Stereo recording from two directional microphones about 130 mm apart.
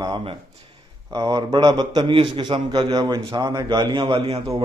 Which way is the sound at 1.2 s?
35° right (ahead or behind).